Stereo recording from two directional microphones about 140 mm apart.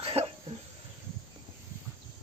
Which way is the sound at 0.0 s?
45° right (ahead or behind).